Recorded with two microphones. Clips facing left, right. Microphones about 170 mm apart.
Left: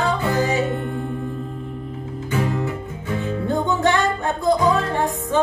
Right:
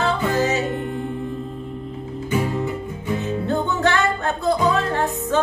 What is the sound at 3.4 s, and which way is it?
Music, 15° left (ahead or behind).